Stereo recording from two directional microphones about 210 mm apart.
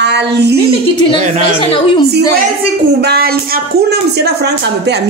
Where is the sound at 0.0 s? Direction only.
55° right (ahead or behind).